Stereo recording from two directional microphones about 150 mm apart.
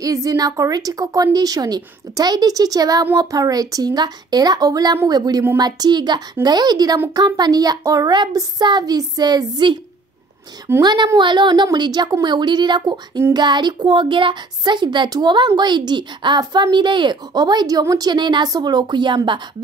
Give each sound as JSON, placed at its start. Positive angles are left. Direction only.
{"t": 0.0, "sound": "a woman's voice", "side_deg": -25}
{"t": 10.8, "sound": "a woman's voice", "side_deg": -30}